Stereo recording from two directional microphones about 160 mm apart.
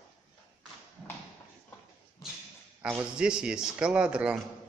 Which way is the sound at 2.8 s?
5° right (ahead or behind).